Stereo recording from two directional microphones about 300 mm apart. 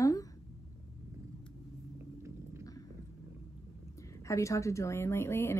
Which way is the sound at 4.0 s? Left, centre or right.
Centre.